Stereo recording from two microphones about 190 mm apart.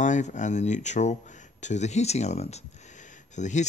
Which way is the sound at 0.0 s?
40° left (ahead or behind).